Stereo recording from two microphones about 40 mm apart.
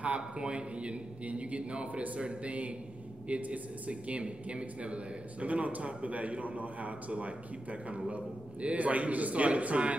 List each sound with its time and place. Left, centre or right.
0.0 s a man's voice: right